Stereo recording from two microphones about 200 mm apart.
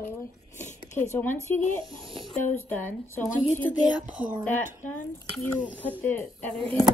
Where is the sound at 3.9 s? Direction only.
5° right (ahead or behind).